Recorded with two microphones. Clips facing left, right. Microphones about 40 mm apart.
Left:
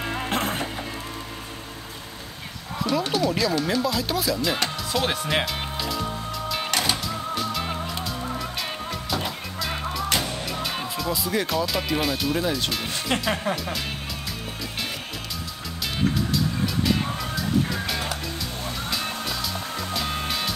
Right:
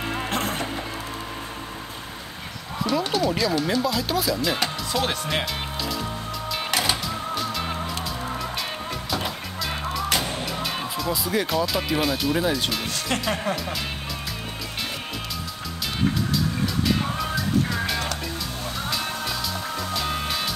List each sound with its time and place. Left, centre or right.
0.3 s music: centre
2.8 s music: centre
9.1 s music: centre
10.5 s speech: centre
13.1 s speech: centre
16.8 s music: centre